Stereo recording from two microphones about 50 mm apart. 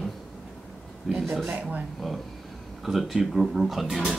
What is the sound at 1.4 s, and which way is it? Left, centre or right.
Speech, right.